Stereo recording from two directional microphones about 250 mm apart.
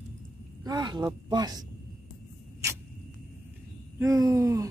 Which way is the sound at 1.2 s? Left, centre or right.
Centre.